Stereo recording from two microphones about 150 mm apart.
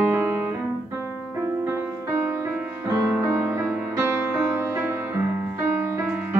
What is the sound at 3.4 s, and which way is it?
Music, 10° right (ahead or behind).